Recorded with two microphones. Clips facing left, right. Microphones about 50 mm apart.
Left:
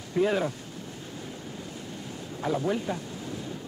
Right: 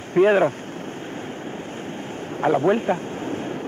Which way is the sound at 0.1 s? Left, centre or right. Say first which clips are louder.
Right 9 dB; right.